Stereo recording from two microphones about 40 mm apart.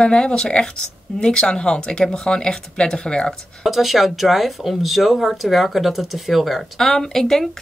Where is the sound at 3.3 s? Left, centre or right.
Centre.